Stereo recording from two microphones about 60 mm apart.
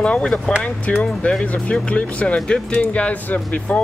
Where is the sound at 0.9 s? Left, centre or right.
Left.